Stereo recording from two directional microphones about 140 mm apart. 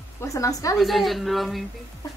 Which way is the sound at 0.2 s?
25° left (ahead or behind).